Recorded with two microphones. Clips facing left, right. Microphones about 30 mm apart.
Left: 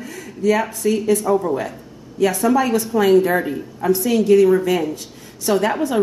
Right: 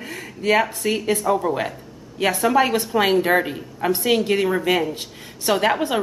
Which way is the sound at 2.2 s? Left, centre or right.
Right.